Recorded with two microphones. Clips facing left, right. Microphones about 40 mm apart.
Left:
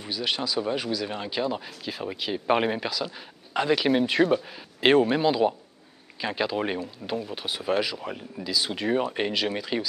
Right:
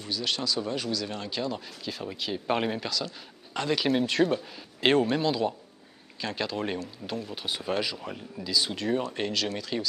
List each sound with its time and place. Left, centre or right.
0.0 s speech: centre